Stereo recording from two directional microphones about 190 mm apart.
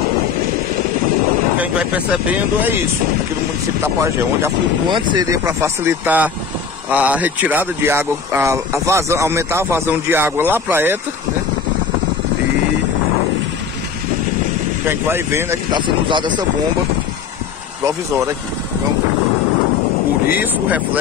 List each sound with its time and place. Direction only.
1.6 s speech: 5° right (ahead or behind)
3.8 s speech: 15° right (ahead or behind)
14.9 s speech: 10° right (ahead or behind)
17.8 s speech: 15° right (ahead or behind)
20.2 s speech: 10° right (ahead or behind)